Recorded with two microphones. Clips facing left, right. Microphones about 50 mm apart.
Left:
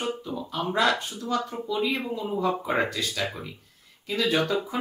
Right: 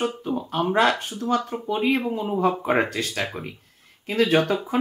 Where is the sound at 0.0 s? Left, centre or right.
Right.